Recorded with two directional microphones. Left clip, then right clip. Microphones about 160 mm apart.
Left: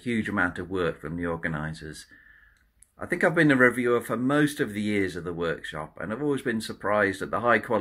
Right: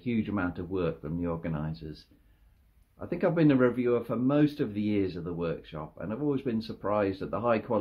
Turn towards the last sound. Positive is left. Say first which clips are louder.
# left 5 dB
turn(degrees=5)  # may be behind; listen again after turning